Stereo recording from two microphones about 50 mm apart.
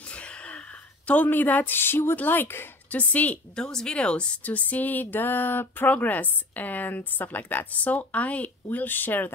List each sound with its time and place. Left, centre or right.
0.0 s a sound: left
2.1 s speech: left
2.9 s speech: left
3.5 s speech: centre
4.4 s speech: left
8.7 s speech: left